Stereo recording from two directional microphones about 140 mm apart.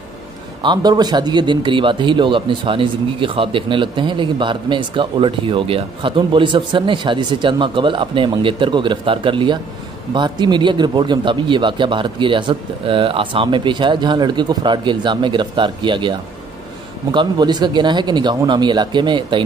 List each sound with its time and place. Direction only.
0.6 s a man's voice: 30° right (ahead or behind)